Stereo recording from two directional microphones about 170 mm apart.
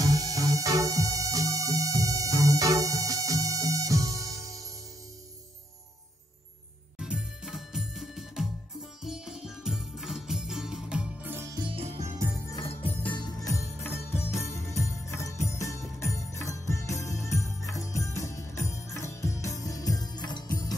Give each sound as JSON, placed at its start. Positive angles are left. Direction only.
{"t": 0.0, "sound": "music", "side_deg": -20}
{"t": 7.0, "sound": "music", "side_deg": -5}
{"t": 11.6, "sound": "music", "side_deg": -35}
{"t": 12.4, "sound": "music", "side_deg": 20}